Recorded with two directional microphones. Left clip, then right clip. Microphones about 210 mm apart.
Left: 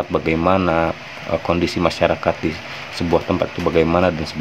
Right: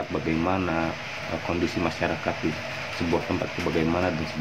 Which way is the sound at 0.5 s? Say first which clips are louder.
Left 12 dB; 50° left (ahead or behind).